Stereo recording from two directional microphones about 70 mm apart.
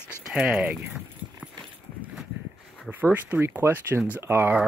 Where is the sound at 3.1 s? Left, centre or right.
Right.